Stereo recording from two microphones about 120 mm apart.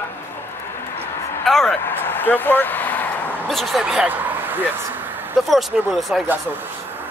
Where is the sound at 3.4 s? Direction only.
Centre (ahead or behind); by 5.4 s 15° right (ahead or behind).